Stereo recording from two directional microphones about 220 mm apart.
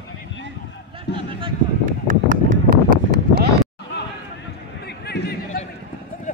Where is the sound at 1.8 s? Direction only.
35° right (ahead or behind).